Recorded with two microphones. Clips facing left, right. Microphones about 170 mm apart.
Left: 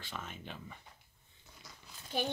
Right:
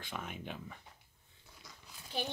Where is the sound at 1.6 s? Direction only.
Centre (ahead or behind).